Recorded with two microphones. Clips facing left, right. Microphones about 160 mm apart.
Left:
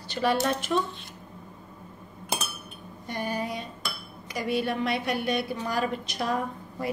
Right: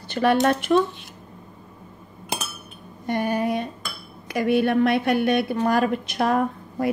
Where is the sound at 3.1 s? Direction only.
60° right (ahead or behind).